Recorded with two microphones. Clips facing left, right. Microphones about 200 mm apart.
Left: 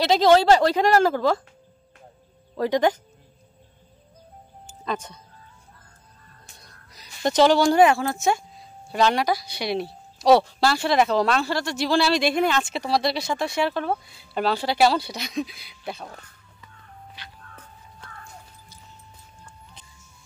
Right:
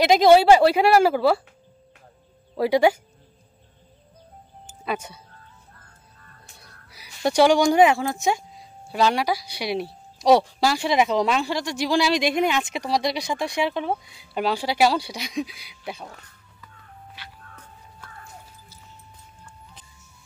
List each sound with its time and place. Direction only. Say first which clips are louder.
0.0 s speech: right 2 dB; 15° right (ahead or behind)
2.5 s speech: right 2 dB; 10° right (ahead or behind)
4.8 s speech: right 1 dB; 10° right (ahead or behind)
6.6 s speech: right 1 dB; 10° right (ahead or behind)